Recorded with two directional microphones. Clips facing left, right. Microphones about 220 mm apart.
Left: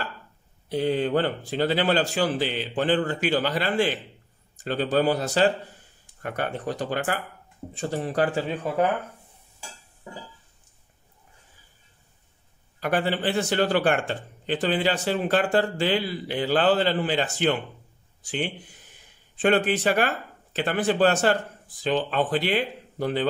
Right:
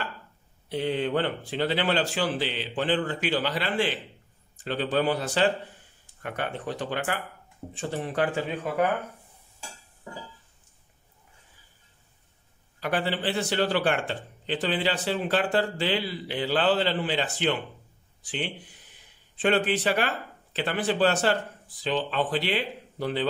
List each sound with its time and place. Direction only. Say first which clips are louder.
0.7 s speech: left 3 dB; 40° left (ahead or behind)
12.8 s speech: left 3 dB; 50° left (ahead or behind)